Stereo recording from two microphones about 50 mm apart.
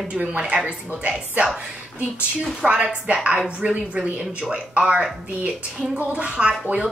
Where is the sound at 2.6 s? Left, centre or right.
Centre.